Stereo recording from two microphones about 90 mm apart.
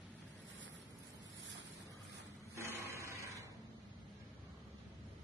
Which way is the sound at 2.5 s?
30° right (ahead or behind).